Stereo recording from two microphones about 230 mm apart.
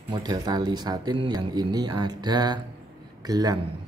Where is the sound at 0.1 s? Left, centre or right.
Centre.